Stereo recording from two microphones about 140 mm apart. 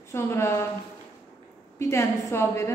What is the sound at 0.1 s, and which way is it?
Speech, 20° left (ahead or behind).